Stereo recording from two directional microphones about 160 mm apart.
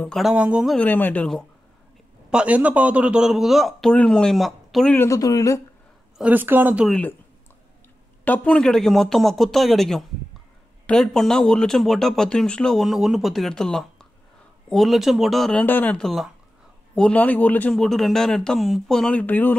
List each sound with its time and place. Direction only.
0.1 s speech: centre (ahead or behind)
0.7 s speech: 10° left (ahead or behind)
2.3 s speech: 10° right (ahead or behind)
4.9 s speech: 20° left (ahead or behind)
6.1 s speech: 10° right (ahead or behind)
8.3 s speech: 5° left (ahead or behind)
15.6 s speech: 10° left (ahead or behind)